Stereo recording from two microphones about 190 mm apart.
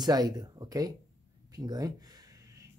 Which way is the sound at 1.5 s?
20° right (ahead or behind).